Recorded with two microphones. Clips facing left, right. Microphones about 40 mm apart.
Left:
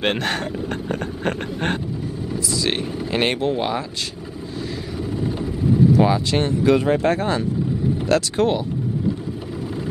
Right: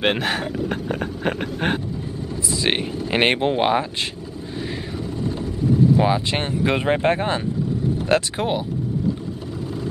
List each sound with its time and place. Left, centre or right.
0.0 s speech: centre
2.3 s vehicle: right
3.1 s speech: right
5.2 s vehicle: centre
5.9 s speech: right
8.4 s speech: centre